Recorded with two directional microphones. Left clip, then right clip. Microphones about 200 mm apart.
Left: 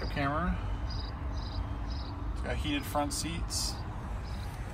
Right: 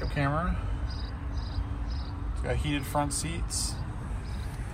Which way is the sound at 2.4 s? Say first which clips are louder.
Right 3 dB; 15° left (ahead or behind).